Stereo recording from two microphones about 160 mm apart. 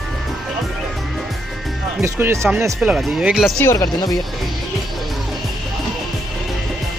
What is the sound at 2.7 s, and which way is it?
Speech, centre (ahead or behind).